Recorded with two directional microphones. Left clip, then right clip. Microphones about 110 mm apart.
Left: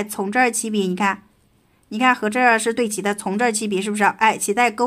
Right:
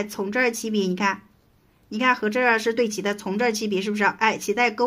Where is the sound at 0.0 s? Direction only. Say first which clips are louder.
Left 4 dB; 40° left (ahead or behind).